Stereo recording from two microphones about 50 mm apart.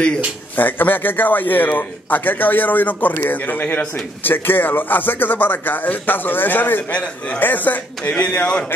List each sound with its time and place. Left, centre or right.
0.6 s a man's voice: left
6.9 s a man's voice: left